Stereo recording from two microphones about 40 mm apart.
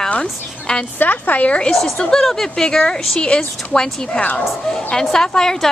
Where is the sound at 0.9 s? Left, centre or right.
Left.